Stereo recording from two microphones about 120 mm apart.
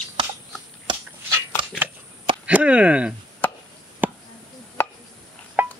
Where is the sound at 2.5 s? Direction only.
10° right (ahead or behind).